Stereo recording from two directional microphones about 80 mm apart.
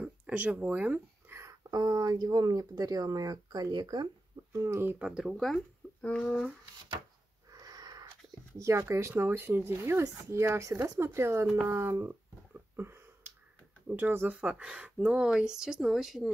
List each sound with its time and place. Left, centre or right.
0.0 s speech: centre
1.3 s a sound: right
1.7 s speech: right
4.5 s speech: right
4.8 s speech: centre
5.1 s speech: centre
6.0 s speech: centre
7.5 s a sound: right
8.5 s speech: right
12.7 s a sound: right
13.8 s speech: right; by 16.3 s centre